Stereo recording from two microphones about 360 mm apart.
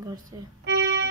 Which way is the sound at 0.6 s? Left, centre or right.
Right.